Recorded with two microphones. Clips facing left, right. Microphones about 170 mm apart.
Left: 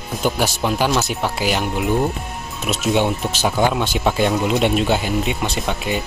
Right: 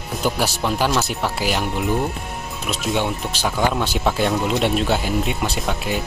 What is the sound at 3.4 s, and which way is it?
Speech, 20° left (ahead or behind).